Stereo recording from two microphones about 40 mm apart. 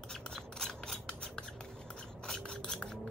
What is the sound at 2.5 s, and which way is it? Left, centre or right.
Filing, centre.